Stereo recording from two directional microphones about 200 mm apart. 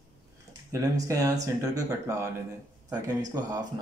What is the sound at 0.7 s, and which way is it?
Speech, 15° right (ahead or behind).